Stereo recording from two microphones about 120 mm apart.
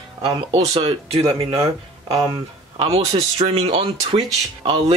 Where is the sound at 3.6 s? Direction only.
45° right (ahead or behind).